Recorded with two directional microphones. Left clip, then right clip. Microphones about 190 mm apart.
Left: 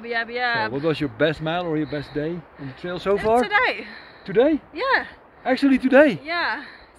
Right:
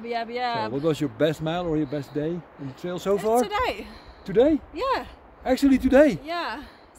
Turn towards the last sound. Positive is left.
turn(degrees=-15)  # may be behind; listen again after turning